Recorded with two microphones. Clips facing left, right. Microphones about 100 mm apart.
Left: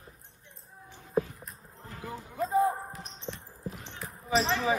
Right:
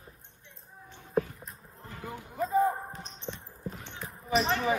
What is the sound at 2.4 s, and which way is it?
Basketball bounce, centre (ahead or behind).